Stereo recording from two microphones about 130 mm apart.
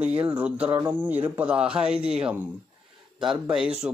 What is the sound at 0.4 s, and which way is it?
Speech, 15° right (ahead or behind).